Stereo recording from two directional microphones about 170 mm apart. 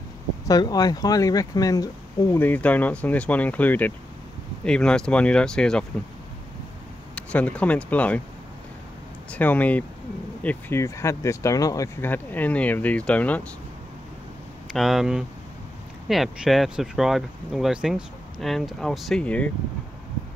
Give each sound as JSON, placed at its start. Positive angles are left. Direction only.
{"t": 0.5, "sound": "speech", "side_deg": 20}
{"t": 2.4, "sound": "speech", "side_deg": 10}
{"t": 7.2, "sound": "speech", "side_deg": 5}
{"t": 9.3, "sound": "speech", "side_deg": 10}
{"t": 14.7, "sound": "speech", "side_deg": 0}